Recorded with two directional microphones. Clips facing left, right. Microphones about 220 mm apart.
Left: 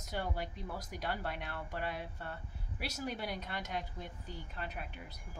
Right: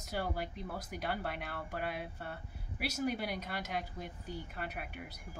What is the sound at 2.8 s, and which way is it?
Speech, 70° right (ahead or behind).